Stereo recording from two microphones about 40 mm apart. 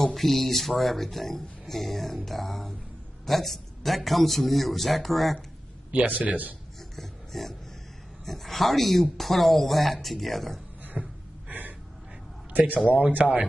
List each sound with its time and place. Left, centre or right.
0.0 s speech: centre
5.9 s a man's voice: right
7.0 s a sound: centre
8.3 s speech: centre
10.8 s a sound: right
12.5 s speech: right
12.9 s a man's voice: right